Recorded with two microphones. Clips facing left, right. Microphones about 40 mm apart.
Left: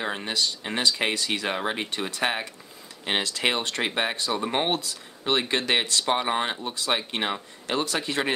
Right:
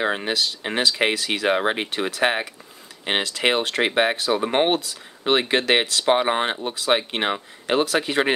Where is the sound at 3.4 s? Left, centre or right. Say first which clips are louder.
Right 7 dB; right.